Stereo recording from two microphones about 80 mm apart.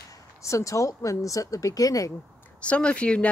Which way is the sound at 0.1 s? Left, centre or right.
Left.